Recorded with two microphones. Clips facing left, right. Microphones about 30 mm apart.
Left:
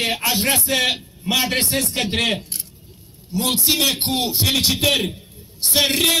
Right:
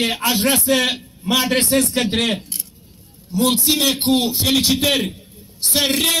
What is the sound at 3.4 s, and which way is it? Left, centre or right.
Speech, left.